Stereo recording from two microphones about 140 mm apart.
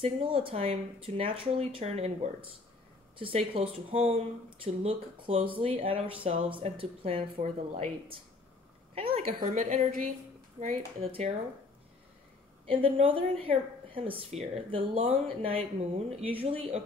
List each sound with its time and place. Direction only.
0.0 s a woman's voice: 40° right (ahead or behind)
3.2 s a woman's voice: 40° right (ahead or behind)
9.3 s a woman's voice: 65° right (ahead or behind)
10.6 s speech: 45° right (ahead or behind)
12.6 s a woman's voice: 40° right (ahead or behind)